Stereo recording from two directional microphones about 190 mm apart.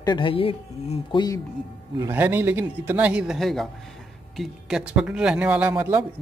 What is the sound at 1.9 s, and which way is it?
Speech, 10° right (ahead or behind).